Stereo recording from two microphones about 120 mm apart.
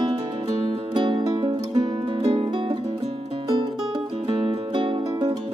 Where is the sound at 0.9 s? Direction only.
40° right (ahead or behind).